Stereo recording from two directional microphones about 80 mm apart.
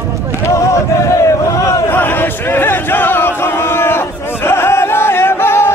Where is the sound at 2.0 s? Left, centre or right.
Left.